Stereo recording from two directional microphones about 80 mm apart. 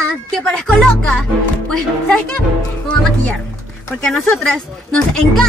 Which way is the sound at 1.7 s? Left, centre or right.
Centre.